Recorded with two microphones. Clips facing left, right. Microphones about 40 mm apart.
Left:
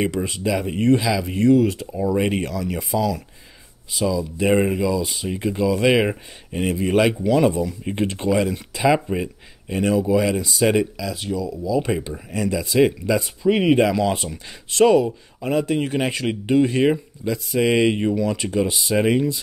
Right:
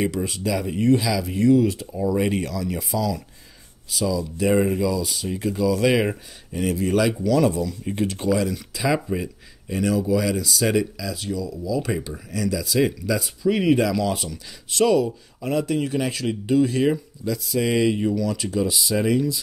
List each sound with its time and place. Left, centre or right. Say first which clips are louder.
0.0 s speech: left 2 dB; left
0.9 s speech: left 2 dB; left
2.2 s speech: left 1 dB; left
2.8 s speech: left 5 dB; left